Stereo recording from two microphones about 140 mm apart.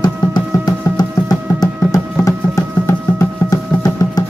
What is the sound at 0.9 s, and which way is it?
Music, 30° left (ahead or behind).